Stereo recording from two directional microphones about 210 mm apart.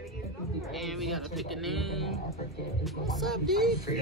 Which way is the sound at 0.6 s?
Centre (ahead or behind).